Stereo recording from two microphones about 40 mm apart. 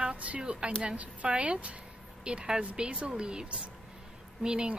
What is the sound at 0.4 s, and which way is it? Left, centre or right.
Speech, right.